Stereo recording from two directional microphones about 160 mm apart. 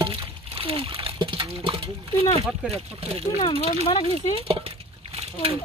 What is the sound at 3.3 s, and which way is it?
Speech, 35° left (ahead or behind).